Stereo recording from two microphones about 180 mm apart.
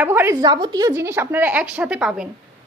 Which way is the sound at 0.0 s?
10° right (ahead or behind).